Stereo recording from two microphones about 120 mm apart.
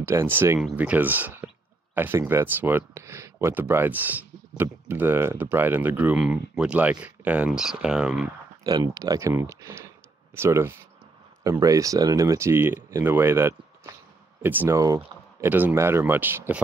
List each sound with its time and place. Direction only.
0.0 s speech: 20° right (ahead or behind)
8.6 s speech: 35° right (ahead or behind); by 16.6 s 15° right (ahead or behind)